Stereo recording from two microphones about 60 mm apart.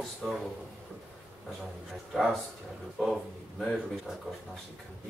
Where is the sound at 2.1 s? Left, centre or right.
Centre.